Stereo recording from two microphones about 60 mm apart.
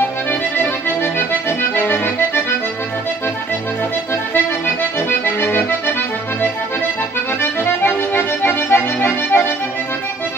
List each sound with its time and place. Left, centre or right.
0.3 s accordion: left
5.2 s accordion: left
7.6 s accordion: left